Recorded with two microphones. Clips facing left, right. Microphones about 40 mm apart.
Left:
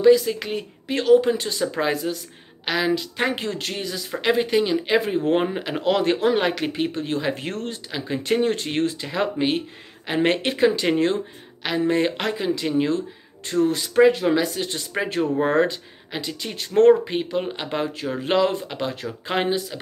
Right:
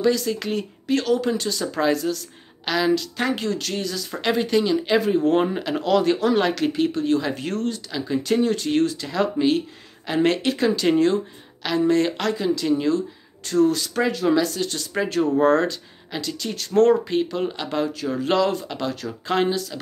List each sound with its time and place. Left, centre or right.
0.0 s speech: centre
3.3 s speech: left